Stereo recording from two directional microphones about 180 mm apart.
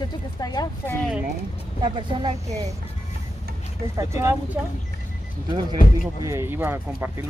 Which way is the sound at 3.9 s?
15° right (ahead or behind).